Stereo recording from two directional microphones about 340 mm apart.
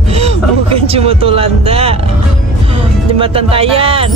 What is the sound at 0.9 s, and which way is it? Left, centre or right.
Music, centre.